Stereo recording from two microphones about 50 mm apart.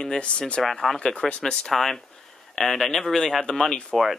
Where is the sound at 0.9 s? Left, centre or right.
Centre.